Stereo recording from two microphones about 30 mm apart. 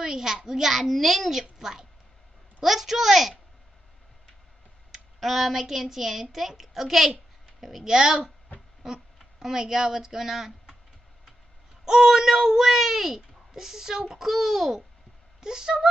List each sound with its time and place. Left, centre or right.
0.0 s a child's voice: centre
5.2 s speech: centre
8.8 s a sound: centre
11.8 s speech: centre
15.4 s speech: right